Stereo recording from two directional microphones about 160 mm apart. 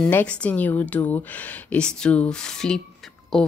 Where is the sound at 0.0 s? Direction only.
10° left (ahead or behind).